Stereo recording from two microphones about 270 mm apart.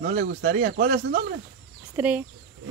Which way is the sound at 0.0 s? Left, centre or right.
Right.